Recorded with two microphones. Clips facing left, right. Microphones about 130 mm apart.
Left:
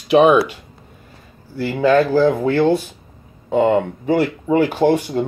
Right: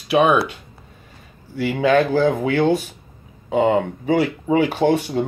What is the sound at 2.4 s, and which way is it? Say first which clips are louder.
Speech: left 2 dB; 15° right (ahead or behind).